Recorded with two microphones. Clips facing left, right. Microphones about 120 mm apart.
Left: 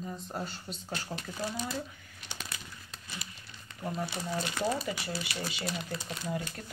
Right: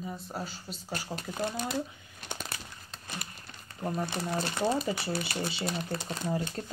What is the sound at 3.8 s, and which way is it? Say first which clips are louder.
Speech: right 3 dB; 50° right (ahead or behind).